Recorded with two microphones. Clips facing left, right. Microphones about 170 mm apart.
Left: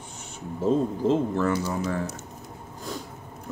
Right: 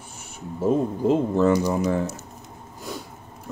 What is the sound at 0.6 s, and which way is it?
Speech, 15° right (ahead or behind).